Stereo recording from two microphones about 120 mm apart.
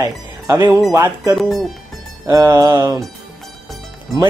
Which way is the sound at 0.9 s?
25° right (ahead or behind).